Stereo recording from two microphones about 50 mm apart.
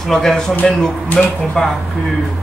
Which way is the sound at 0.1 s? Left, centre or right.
Centre.